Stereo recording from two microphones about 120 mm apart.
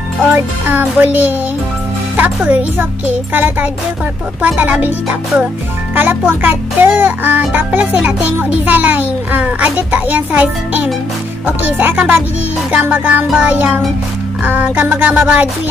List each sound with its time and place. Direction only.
0.2 s music: 10° right (ahead or behind)